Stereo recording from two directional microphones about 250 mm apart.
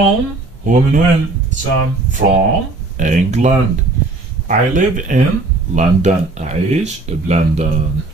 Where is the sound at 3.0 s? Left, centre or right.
Right.